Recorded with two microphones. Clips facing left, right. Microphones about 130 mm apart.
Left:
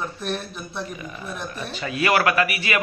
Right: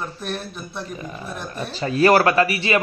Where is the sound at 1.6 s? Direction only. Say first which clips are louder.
Right 8 dB; 35° right (ahead or behind).